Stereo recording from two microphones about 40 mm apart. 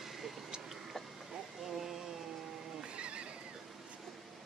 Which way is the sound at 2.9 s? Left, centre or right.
Right.